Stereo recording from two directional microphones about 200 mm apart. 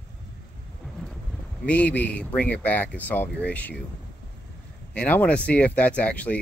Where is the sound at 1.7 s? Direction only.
5° left (ahead or behind).